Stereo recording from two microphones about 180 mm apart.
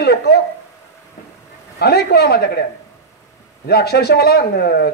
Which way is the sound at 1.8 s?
65° left (ahead or behind).